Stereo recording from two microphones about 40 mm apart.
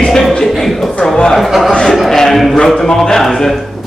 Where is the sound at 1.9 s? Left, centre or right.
Centre.